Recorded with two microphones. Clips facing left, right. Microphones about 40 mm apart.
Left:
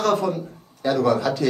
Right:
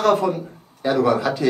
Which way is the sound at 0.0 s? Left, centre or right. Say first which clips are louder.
Right 3 dB; centre.